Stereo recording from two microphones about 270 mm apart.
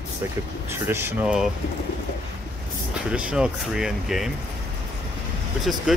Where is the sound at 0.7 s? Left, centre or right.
Centre.